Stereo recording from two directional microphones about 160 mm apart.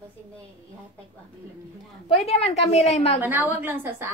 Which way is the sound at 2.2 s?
40° left (ahead or behind).